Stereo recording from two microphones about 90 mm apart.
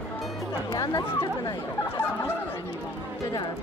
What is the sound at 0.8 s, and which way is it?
Speech, 45° left (ahead or behind).